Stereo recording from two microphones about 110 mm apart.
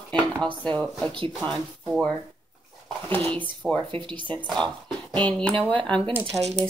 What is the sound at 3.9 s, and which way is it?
Speech, 45° right (ahead or behind).